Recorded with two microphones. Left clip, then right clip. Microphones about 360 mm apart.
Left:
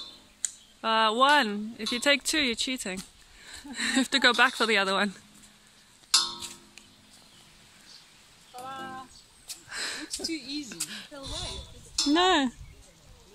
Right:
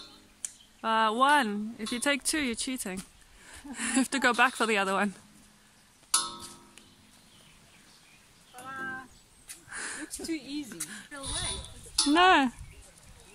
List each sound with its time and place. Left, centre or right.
0.4 s speech: centre
8.6 s cat: centre
9.5 s a sound: centre
10.2 s speech: right
10.7 s speech: centre